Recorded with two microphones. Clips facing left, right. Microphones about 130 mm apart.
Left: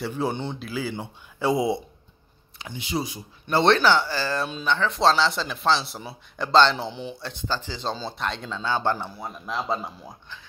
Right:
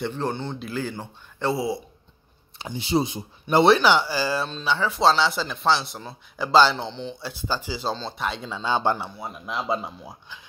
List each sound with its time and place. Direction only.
0.0 s speech: 10° left (ahead or behind)
0.6 s a man's voice: 5° left (ahead or behind)
2.6 s speech: 30° right (ahead or behind)
3.6 s a man's voice: 10° right (ahead or behind)
6.9 s speech: 10° left (ahead or behind)
7.2 s speech: 5° right (ahead or behind)
8.9 s a man's voice: centre (ahead or behind)